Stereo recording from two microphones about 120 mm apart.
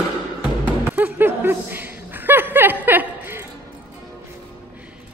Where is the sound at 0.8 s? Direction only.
15° right (ahead or behind).